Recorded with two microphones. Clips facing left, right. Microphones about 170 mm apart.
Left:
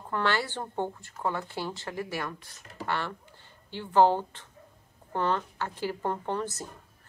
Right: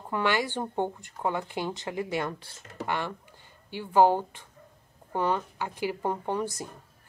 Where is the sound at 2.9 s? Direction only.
15° right (ahead or behind).